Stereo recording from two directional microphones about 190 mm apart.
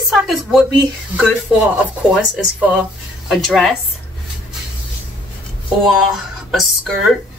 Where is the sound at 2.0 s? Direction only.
5° right (ahead or behind).